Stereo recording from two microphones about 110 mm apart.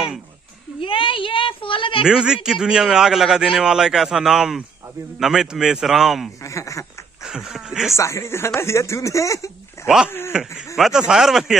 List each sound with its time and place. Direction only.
0.7 s a woman's voice: 50° left (ahead or behind)
2.0 s a man's voice: 5° right (ahead or behind)
6.4 s speech: 30° left (ahead or behind)
7.2 s a man's voice: 5° right (ahead or behind)
7.9 s speech: 25° left (ahead or behind)
10.3 s a man's voice: 5° right (ahead or behind)